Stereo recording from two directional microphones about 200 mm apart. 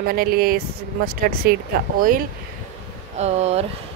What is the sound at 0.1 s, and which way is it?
Speech, 50° right (ahead or behind).